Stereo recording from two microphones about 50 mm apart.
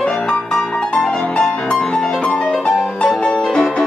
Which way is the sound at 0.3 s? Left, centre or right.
Centre.